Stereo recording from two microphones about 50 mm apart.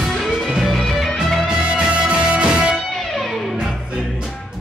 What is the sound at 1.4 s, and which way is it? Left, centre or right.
Music, centre.